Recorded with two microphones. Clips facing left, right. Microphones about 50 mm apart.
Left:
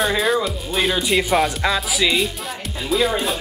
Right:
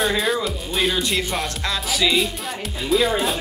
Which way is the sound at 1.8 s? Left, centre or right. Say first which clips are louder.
Left 1 dB; centre.